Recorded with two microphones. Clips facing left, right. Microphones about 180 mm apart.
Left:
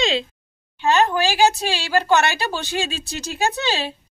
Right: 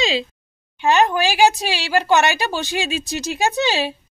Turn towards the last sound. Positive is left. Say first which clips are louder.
# right 4 dB
turn(degrees=-15)  # may be behind; listen again after turning